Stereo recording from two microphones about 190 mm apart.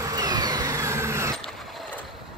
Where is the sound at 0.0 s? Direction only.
20° right (ahead or behind).